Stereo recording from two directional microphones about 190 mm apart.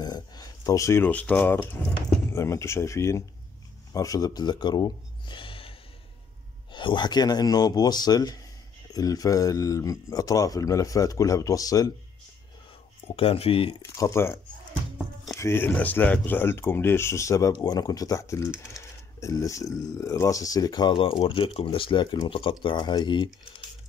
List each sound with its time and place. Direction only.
0.0 s speech: 20° left (ahead or behind)
13.1 s speech: 30° left (ahead or behind)
13.8 s speech: 15° left (ahead or behind)